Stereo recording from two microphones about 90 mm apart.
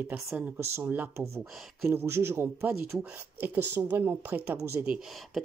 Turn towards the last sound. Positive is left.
turn(degrees=-30)  # may be behind; listen again after turning